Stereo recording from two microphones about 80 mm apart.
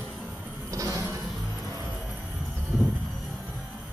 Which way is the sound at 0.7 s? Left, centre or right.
Right.